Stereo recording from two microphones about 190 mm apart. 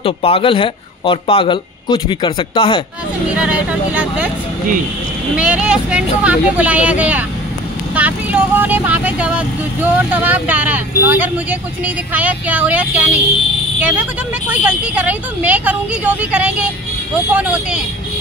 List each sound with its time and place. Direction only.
0.0 s speech: 30° left (ahead or behind)
3.3 s speech: 5° right (ahead or behind)
5.3 s speech: 5° right (ahead or behind)
14.5 s speech: 5° right (ahead or behind)